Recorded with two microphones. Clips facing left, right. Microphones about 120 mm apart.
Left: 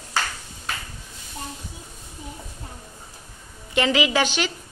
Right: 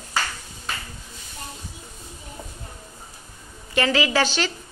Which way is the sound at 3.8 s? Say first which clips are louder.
Even; 15° left (ahead or behind).